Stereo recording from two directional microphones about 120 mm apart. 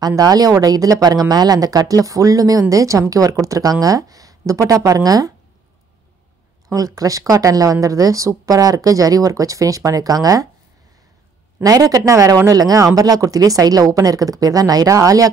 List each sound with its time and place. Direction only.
0.0 s a woman's voice: 30° right (ahead or behind)
6.7 s a woman's voice: 30° right (ahead or behind)
11.6 s speech: 30° right (ahead or behind)